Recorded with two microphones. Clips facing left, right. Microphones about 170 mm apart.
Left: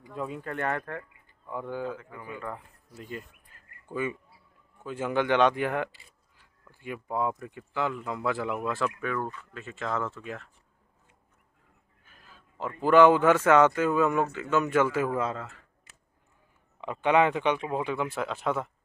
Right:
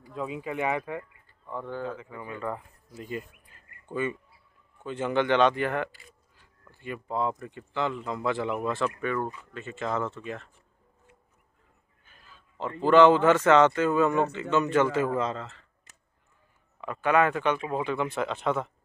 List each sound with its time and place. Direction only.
0.1 s speech: centre (ahead or behind)
1.5 s speech: 10° left (ahead or behind)
9.2 s speech: 15° right (ahead or behind)
9.5 s speech: centre (ahead or behind)
12.0 s a sound: centre (ahead or behind)
12.8 s speech: 10° left (ahead or behind)
16.8 s speech: 20° left (ahead or behind)